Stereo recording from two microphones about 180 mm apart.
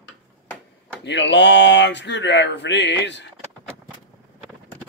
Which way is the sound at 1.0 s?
80° left.